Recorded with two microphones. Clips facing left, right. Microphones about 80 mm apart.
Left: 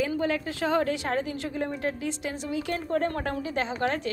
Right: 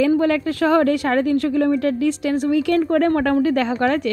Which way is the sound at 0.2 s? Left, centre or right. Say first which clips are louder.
Right 9 dB; right.